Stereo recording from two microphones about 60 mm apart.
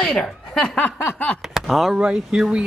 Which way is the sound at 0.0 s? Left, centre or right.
Centre.